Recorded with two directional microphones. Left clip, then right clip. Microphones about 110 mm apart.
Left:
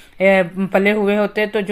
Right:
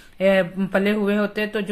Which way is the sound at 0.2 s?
30° left (ahead or behind).